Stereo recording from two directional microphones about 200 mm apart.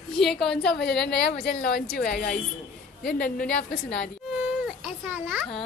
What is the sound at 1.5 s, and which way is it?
A woman's voice, 50° left (ahead or behind).